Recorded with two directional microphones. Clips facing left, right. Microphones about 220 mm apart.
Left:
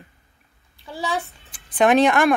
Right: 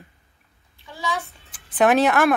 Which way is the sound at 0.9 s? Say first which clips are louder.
Left 2 dB; 30° left (ahead or behind).